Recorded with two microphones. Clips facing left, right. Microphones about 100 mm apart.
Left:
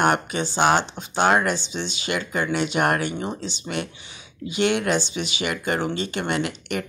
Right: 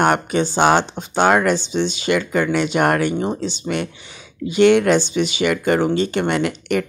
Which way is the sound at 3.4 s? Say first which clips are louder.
Right 6 dB; 50° right (ahead or behind).